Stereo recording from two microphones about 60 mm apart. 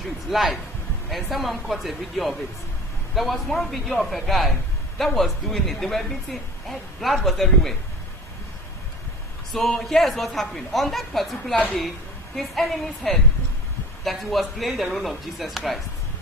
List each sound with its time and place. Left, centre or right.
0.3 s a woman's voice: centre
9.5 s a woman's voice: centre
11.5 s a woman's voice: left
12.4 s a woman's voice: centre